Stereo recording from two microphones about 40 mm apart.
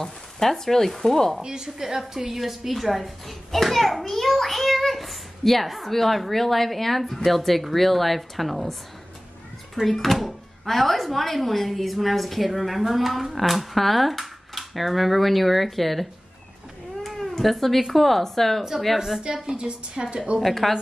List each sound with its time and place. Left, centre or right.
0.0 s speech: centre
1.4 s speech: centre
9.8 s speech: centre
18.9 s a woman's voice: centre
20.3 s speech: centre